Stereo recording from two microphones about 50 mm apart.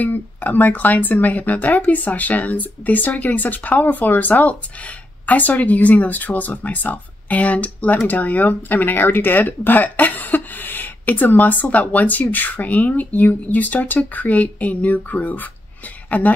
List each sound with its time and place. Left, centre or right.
0.0 s speech: left